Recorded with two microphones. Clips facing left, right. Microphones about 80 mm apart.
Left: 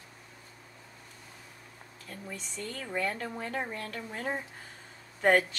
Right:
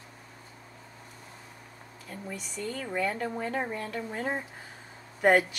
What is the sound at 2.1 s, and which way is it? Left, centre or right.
Speech, centre.